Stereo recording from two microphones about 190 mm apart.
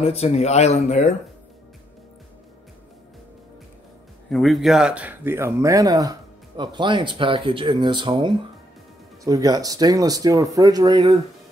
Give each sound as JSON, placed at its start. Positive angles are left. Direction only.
{"t": 0.0, "sound": "speech", "side_deg": 30}
{"t": 4.3, "sound": "speech", "side_deg": 0}